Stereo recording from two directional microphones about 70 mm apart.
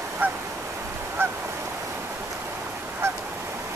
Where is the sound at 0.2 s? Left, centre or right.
Right.